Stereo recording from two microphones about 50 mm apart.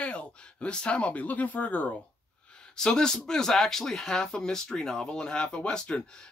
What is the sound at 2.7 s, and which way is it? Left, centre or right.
Speech, centre.